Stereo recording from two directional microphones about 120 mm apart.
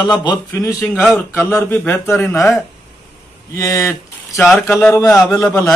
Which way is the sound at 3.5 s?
30° left (ahead or behind).